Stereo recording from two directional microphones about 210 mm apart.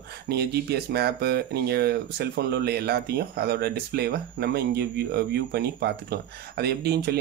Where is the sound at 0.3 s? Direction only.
50° right (ahead or behind).